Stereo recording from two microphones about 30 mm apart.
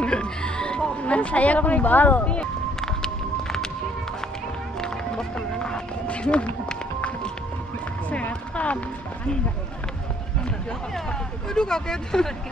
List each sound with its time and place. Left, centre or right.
0.0 s music: left
1.0 s speech: left
4.7 s run: left
8.1 s music: left
11.1 s speech: left